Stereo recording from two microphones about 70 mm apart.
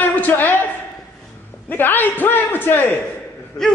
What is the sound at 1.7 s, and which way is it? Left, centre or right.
A man's voice, left.